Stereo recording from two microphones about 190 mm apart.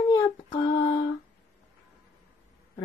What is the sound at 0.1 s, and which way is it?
Child singing, 20° left (ahead or behind).